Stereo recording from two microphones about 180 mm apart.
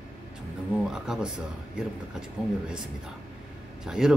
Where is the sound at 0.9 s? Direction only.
5° right (ahead or behind).